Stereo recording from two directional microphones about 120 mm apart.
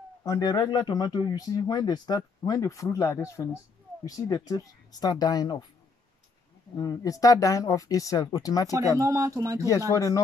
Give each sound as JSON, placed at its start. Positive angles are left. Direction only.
{"t": 0.2, "sound": "speech", "side_deg": 30}
{"t": 6.8, "sound": "speech", "side_deg": 30}
{"t": 8.9, "sound": "speech", "side_deg": -25}
{"t": 9.8, "sound": "speech", "side_deg": 25}